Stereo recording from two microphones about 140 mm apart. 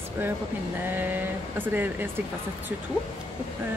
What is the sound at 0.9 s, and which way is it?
Speech, 15° right (ahead or behind).